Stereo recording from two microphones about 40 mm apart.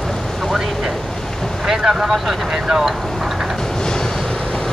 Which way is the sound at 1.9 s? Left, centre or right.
Centre.